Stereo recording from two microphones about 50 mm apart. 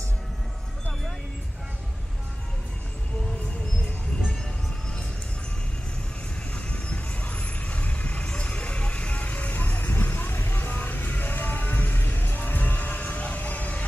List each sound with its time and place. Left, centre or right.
6.5 s vehicle: left